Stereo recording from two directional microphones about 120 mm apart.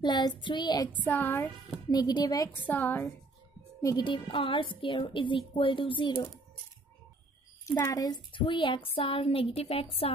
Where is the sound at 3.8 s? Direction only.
40° left (ahead or behind).